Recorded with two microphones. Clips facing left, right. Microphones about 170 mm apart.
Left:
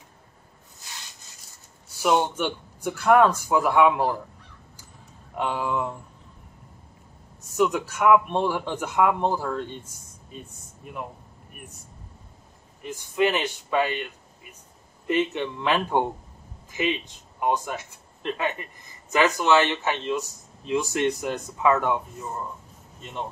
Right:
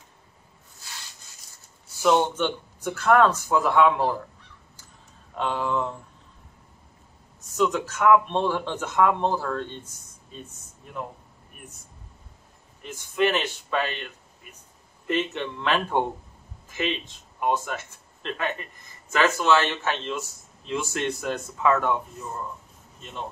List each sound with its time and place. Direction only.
2.0 s speech: 10° left (ahead or behind)
5.3 s speech: 10° left (ahead or behind)
7.5 s speech: 10° left (ahead or behind)
12.8 s speech: 15° left (ahead or behind)
15.0 s speech: 15° left (ahead or behind)